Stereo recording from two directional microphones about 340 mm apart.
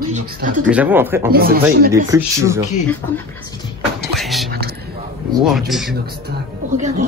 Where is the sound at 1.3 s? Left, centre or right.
Right.